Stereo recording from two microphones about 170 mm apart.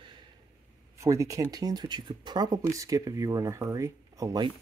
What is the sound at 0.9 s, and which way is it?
Speech, 20° right (ahead or behind).